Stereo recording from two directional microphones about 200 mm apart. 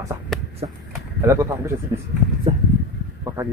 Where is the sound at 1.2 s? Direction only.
15° right (ahead or behind).